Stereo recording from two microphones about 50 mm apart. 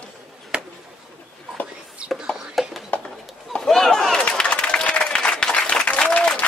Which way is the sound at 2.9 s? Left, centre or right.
Left.